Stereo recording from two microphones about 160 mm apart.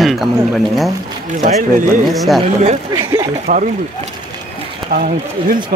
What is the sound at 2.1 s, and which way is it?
Speech, centre (ahead or behind).